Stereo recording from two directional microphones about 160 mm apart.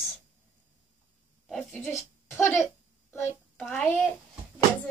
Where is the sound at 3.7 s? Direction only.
10° left (ahead or behind).